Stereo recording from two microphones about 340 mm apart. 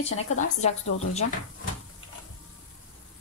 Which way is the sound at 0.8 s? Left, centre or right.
Left.